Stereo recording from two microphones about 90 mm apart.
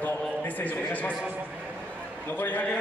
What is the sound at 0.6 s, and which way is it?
Neigh, 20° left (ahead or behind).